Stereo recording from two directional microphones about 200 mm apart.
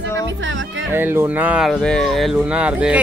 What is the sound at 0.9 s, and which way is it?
Speech, 10° right (ahead or behind).